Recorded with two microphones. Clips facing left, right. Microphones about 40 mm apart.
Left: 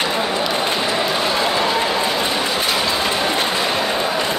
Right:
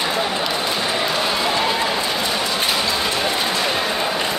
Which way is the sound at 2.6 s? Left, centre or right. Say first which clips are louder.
Left 2 dB; centre.